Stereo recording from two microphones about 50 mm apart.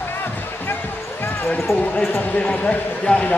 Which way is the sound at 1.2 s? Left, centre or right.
Left.